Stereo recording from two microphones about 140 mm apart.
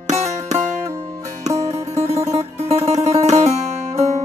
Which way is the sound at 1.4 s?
50° right (ahead or behind).